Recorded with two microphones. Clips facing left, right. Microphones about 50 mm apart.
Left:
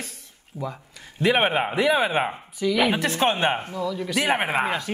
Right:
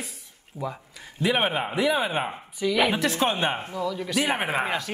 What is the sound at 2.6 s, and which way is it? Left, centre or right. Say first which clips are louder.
Speech: left 1 dB; centre.